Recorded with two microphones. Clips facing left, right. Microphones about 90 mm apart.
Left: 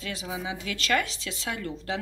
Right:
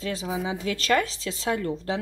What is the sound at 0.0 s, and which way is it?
Speech, 35° right (ahead or behind).